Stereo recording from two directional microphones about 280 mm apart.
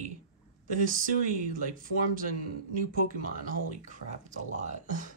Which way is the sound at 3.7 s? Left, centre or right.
Right.